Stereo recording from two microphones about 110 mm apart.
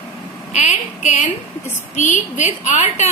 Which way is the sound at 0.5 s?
90° left.